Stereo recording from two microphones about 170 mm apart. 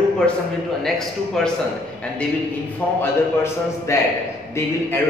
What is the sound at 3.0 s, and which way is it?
A man's voice, 15° left (ahead or behind).